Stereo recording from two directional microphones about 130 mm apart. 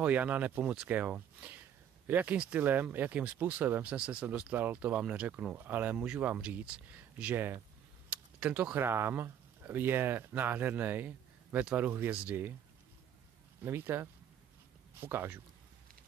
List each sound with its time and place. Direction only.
0.0 s speech: 10° right (ahead or behind)
13.7 s speech: 20° right (ahead or behind)